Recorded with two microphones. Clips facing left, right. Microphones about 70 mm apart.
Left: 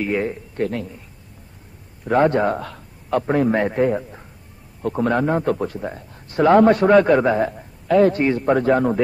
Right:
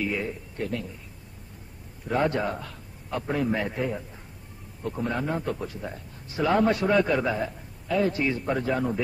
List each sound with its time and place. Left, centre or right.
0.0 s a man's voice: left
2.0 s a man's voice: left
3.3 s speech: left
3.5 s a man's voice: left
5.8 s speech: left
6.2 s a man's voice: left